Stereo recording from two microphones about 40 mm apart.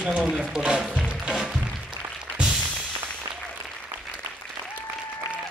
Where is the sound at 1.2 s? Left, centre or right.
Centre.